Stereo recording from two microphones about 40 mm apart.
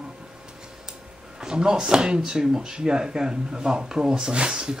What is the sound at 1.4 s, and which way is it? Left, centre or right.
Speech, centre.